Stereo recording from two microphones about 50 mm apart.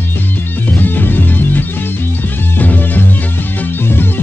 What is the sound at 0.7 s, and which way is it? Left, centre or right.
Music, left.